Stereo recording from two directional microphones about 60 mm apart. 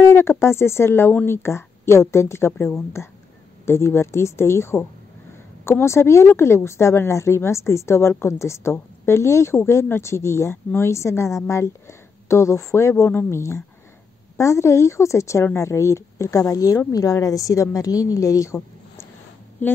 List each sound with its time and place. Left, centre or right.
0.0 s a woman's voice: left
19.6 s a woman's voice: left